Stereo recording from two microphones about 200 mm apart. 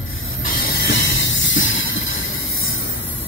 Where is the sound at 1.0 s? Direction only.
70° left (ahead or behind).